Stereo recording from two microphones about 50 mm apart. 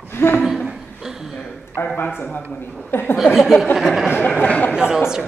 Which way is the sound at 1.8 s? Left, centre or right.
Left.